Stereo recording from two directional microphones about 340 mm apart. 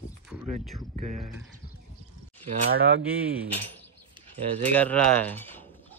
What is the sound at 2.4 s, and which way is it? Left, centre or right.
Speech, right.